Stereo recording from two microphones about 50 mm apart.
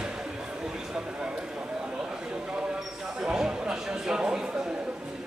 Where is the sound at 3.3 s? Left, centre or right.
Centre.